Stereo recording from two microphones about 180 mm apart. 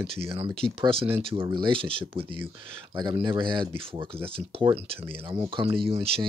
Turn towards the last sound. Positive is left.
turn(degrees=-30)  # may be behind; listen again after turning